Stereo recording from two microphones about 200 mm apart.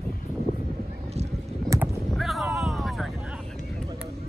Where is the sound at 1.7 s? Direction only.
15° right (ahead or behind).